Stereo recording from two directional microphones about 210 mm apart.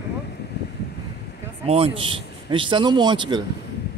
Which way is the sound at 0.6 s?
50° left (ahead or behind).